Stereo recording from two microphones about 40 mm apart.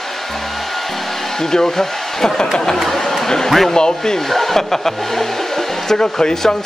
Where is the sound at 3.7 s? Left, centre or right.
Centre.